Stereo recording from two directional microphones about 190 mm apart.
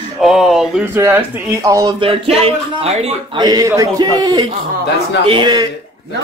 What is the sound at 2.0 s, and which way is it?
Speech, 30° right (ahead or behind).